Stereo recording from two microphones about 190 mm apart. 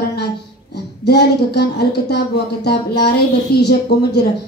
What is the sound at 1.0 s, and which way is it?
A man's voice, 60° left (ahead or behind).